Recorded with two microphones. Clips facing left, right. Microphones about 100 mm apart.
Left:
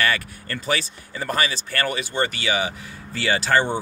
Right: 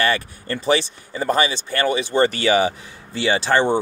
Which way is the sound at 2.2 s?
40° right (ahead or behind).